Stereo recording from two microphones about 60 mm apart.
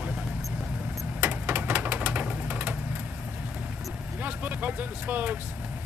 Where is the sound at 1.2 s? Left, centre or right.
Right.